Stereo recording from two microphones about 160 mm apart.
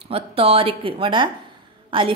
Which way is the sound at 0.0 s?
35° right (ahead or behind).